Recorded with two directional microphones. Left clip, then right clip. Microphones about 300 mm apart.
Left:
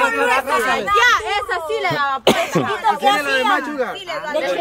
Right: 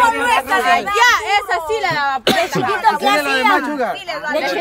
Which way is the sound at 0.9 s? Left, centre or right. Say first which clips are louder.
Left 1 dB; right.